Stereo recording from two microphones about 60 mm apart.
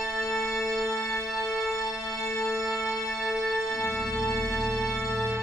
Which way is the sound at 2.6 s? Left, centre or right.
Centre.